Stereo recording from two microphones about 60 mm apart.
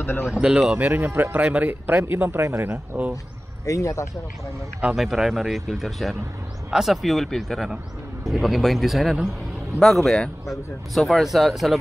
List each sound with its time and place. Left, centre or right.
0.0 s speech: left
0.3 s speech: centre
0.7 s a man's voice: right
1.0 s speech: right
1.3 s a man's voice: right
2.0 s speech: right
3.6 s speech: left
4.9 s speech: centre